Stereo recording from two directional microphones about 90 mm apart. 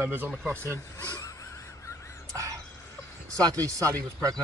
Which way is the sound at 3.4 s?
40° right (ahead or behind).